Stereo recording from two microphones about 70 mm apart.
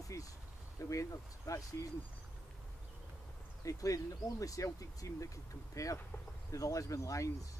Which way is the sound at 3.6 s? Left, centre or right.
Left.